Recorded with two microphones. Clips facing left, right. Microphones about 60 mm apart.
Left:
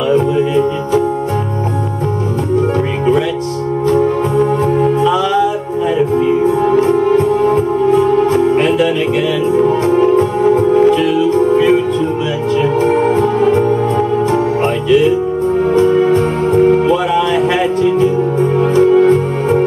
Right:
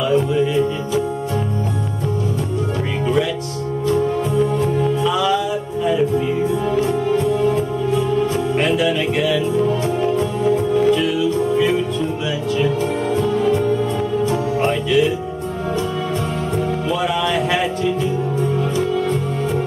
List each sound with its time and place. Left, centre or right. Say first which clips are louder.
3.8 s music: left 5 dB; left
8.6 s music: left 5 dB; left
9.6 s music: left 7 dB; left
15.7 s music: left 12 dB; left
16.9 s music: left 6 dB; left